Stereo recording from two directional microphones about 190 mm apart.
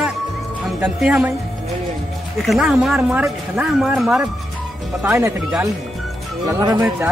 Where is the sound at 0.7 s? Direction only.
5° right (ahead or behind).